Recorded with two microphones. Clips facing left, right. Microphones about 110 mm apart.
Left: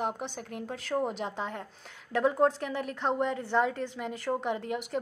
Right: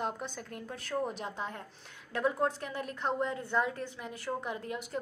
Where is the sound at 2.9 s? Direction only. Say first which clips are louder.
Left 3 dB; 80° left.